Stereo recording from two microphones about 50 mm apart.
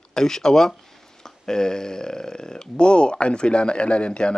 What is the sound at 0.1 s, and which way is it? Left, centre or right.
Speech, centre.